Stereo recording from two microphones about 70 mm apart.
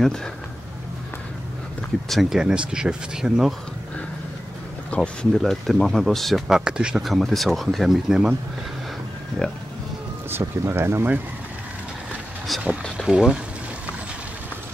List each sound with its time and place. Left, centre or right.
0.0 s speech: centre
2.0 s speech: centre
2.4 s speech: centre
4.9 s speech: centre
5.3 s speech: centre
6.4 s speech: centre
7.0 s speech: centre
10.4 s speech: right
12.9 s speech: centre